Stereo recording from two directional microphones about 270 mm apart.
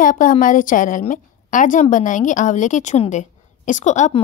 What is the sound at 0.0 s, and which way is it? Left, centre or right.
A woman's voice, left.